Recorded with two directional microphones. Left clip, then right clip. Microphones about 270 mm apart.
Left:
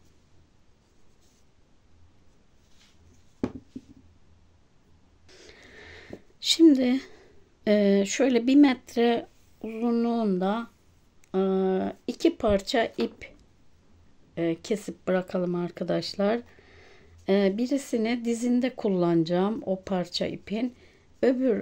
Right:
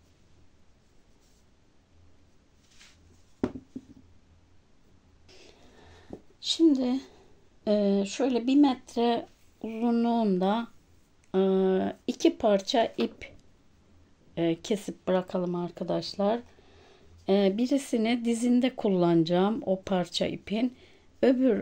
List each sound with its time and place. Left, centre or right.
5.3 s throat clearing: centre
6.4 s speech: left; by 13.3 s centre
14.3 s speech: centre